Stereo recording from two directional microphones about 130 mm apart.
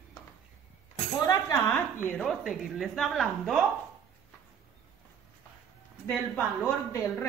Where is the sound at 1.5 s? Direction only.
15° left (ahead or behind).